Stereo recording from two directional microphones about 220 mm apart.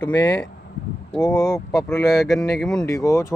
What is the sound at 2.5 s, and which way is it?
Speech, centre (ahead or behind).